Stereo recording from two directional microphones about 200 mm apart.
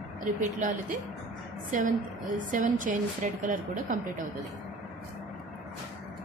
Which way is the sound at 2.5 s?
40° right (ahead or behind).